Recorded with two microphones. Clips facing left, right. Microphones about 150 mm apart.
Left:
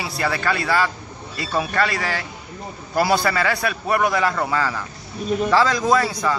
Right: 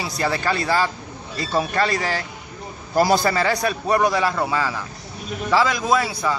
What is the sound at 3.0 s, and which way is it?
Speech, 40° right (ahead or behind).